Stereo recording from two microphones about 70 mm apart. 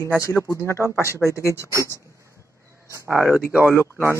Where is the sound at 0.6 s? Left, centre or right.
Left.